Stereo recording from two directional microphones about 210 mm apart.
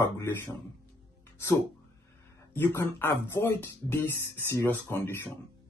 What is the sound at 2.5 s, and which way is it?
Speech, 10° left (ahead or behind).